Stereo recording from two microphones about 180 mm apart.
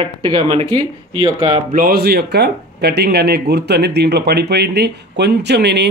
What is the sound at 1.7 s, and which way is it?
Speech, 50° right (ahead or behind).